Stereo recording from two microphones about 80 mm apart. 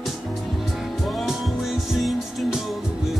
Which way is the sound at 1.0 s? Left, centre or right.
Centre.